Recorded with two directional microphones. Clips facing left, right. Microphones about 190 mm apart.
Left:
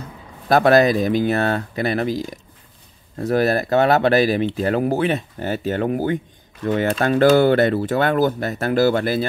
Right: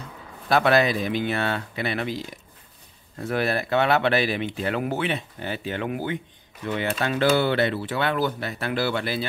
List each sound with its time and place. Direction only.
0.5 s speech: 40° left (ahead or behind)